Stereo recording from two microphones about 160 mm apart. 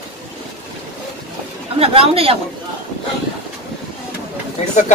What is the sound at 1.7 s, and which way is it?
Speech, 35° right (ahead or behind).